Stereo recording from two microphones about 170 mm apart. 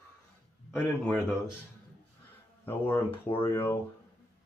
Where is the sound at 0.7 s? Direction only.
10° left (ahead or behind).